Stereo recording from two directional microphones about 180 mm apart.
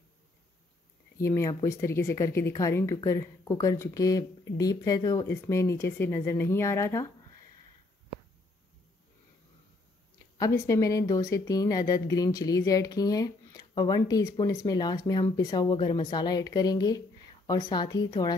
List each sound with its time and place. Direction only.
1.1 s speech: 15° left (ahead or behind)
10.4 s speech: 15° left (ahead or behind)